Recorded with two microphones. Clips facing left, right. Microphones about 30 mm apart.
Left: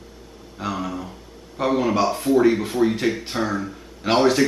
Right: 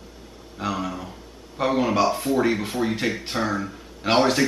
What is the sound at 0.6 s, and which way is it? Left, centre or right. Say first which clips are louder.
Speech: even; centre.